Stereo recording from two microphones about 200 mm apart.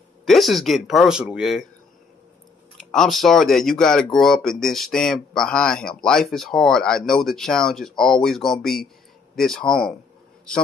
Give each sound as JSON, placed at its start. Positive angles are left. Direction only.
{"t": 0.2, "sound": "speech", "side_deg": 0}
{"t": 2.9, "sound": "speech", "side_deg": 0}